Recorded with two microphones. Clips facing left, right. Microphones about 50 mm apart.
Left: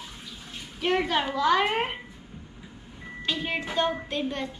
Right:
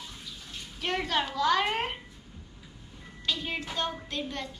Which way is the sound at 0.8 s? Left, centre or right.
Centre.